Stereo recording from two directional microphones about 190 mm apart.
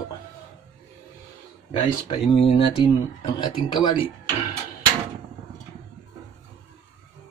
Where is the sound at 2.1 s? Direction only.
30° left (ahead or behind).